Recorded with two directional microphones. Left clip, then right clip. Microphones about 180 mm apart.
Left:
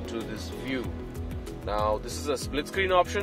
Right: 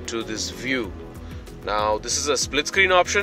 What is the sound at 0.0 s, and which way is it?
Speech, 15° right (ahead or behind).